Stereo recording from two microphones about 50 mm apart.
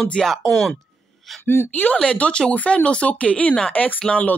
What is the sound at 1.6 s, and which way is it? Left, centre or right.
Speech, left.